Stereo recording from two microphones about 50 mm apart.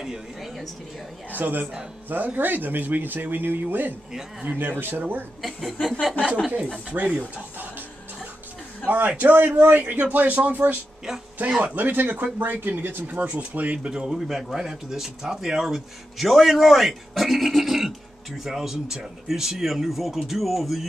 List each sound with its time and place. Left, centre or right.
0.0 s speech: centre
1.3 s speech: right
5.4 s speech: centre
6.6 s speech: right
8.8 s speech: right
14.1 s speech: centre